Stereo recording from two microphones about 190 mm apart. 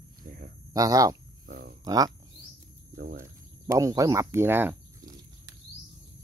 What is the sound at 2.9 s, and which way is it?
Speech, 55° right (ahead or behind).